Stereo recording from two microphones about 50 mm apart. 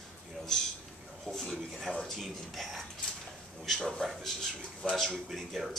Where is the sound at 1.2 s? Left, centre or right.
Centre.